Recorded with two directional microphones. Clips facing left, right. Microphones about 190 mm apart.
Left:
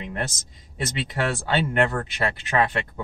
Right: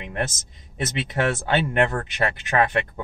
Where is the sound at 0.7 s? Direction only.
20° right (ahead or behind).